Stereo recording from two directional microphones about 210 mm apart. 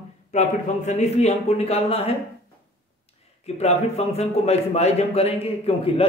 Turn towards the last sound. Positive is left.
turn(degrees=30)  # may be behind; listen again after turning